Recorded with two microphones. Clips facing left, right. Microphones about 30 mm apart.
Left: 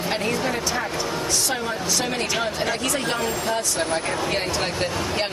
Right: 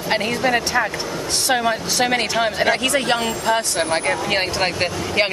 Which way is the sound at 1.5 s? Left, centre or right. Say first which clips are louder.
Right 6 dB; right.